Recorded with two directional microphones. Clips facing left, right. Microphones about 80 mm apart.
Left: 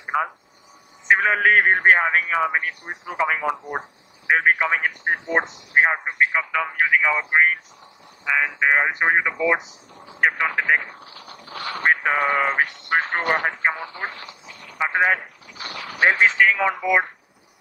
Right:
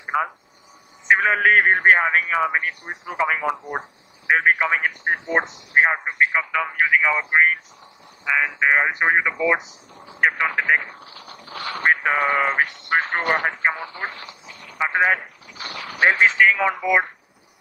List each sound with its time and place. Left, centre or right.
0.0 s a sound: centre
1.0 s a man's voice: centre
11.8 s speech: centre